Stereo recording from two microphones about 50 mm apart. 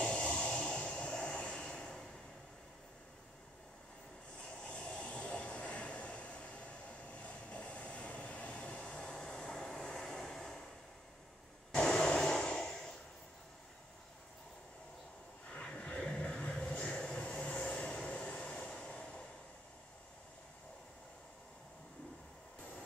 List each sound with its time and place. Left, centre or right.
0.0 s vehicle: centre
4.5 s vehicle: left
11.8 s a sound: centre
15.5 s vehicle: left